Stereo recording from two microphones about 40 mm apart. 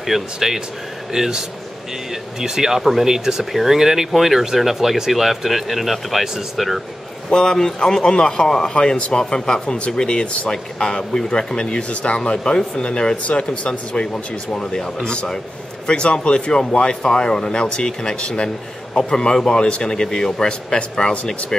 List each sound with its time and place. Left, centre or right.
0.0 s speech: centre
2.4 s speech: centre
7.2 s a man's voice: centre
15.9 s a man's voice: left